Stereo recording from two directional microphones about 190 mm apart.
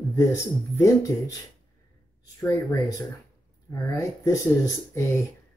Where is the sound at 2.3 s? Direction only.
15° left (ahead or behind).